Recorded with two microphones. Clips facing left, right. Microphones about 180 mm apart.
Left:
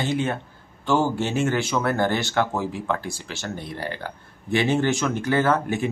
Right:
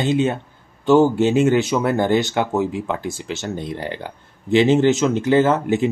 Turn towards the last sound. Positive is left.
turn(degrees=-20)  # may be behind; listen again after turning